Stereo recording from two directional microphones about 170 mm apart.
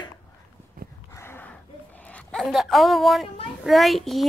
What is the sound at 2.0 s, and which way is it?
A child's voice, 5° left (ahead or behind).